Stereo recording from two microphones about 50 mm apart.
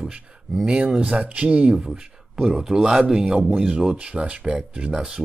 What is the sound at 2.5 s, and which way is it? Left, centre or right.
Speech, centre.